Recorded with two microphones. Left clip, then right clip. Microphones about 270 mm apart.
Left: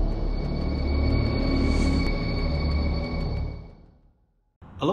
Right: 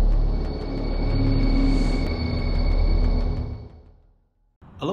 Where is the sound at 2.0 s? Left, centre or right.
Centre.